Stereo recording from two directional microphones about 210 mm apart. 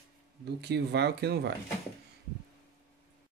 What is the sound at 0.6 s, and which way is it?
Speech, 55° right (ahead or behind).